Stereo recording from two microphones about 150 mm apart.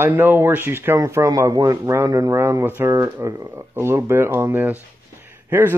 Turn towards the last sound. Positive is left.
turn(degrees=-15)  # may be behind; listen again after turning